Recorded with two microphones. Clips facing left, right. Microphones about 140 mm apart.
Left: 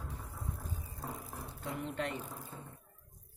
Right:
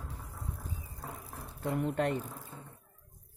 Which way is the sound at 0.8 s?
5° left (ahead or behind).